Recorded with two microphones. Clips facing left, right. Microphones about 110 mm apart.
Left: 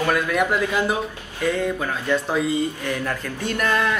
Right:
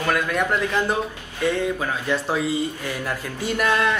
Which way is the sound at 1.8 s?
5° right (ahead or behind).